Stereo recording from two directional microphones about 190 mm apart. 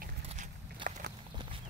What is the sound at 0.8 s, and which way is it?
Walk, 25° right (ahead or behind).